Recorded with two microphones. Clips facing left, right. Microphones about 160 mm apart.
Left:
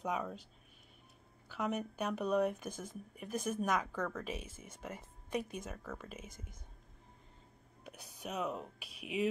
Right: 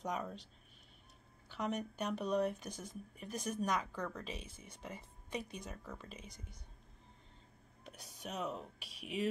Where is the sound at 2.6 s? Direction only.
50° left (ahead or behind).